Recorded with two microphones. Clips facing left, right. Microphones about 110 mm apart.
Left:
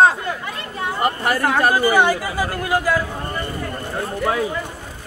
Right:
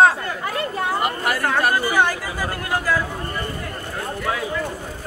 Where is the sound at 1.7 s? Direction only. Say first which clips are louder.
Left 4 dB; 10° left (ahead or behind).